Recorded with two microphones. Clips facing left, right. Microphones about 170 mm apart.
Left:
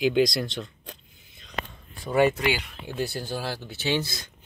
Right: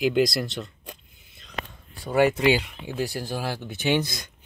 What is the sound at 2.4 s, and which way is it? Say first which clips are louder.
Speech: right 6 dB; 25° right (ahead or behind).